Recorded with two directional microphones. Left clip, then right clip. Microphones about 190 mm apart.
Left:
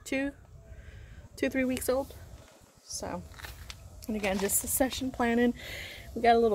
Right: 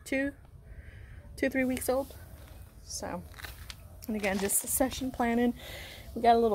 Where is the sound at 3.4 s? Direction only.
35° right (ahead or behind).